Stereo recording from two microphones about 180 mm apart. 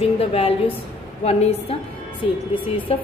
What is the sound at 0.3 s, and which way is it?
A woman's voice, 35° left (ahead or behind).